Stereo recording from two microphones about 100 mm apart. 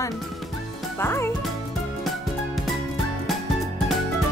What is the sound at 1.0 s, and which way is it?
Speech, 25° left (ahead or behind).